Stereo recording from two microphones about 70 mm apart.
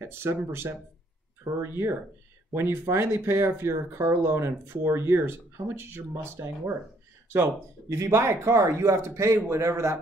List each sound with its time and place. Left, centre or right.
0.0 s speech: right
7.9 s a man's voice: right